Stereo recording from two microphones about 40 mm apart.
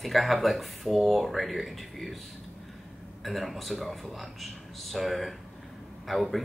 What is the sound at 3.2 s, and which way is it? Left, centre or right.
Speech, centre.